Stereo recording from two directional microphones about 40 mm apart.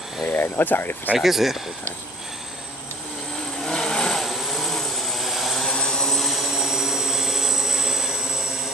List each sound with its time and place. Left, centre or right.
0.3 s speech: left
1.1 s speech: centre
3.6 s vehicle: centre
4.2 s vehicle: centre
5.6 s vehicle: centre
6.0 s vehicle: centre
6.3 s vehicle: centre